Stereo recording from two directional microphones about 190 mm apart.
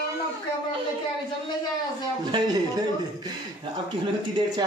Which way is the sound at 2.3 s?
20° right (ahead or behind).